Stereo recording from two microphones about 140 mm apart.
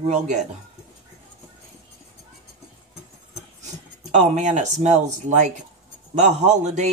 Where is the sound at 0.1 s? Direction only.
55° right (ahead or behind).